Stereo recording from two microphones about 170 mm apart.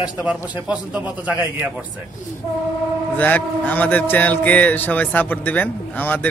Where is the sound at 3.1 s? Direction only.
10° left (ahead or behind).